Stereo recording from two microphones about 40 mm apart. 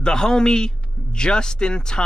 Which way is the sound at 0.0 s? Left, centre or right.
Centre.